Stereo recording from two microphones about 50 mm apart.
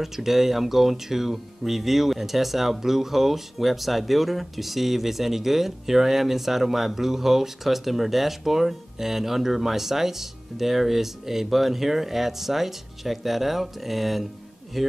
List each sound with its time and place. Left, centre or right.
0.0 s speech: centre